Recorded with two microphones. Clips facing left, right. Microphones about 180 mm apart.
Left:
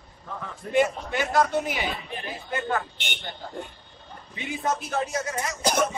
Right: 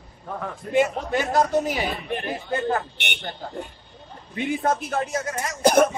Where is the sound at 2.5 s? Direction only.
35° right (ahead or behind).